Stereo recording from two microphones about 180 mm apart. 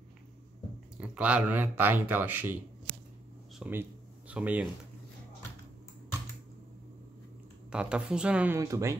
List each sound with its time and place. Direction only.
0.9 s a man's voice: 5° right (ahead or behind)
3.5 s a sound: 10° right (ahead or behind)
4.3 s speech: 5° right (ahead or behind)
7.7 s a woman's voice: 5° right (ahead or behind)
8.5 s a man's voice: 15° right (ahead or behind)